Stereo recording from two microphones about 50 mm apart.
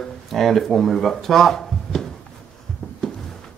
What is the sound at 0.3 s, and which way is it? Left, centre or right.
Speech, centre.